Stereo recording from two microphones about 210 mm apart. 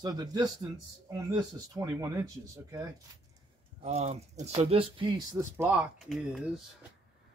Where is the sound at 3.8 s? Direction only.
30° right (ahead or behind); by 6.5 s 5° right (ahead or behind).